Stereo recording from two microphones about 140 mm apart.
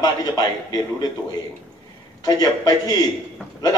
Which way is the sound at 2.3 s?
30° left (ahead or behind).